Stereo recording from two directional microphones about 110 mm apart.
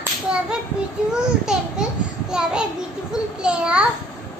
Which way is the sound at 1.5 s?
5° right (ahead or behind).